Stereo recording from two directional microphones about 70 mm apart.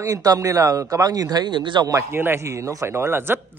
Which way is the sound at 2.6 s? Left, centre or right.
Right.